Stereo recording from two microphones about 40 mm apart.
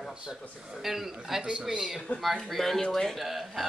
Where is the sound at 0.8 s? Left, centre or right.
Centre.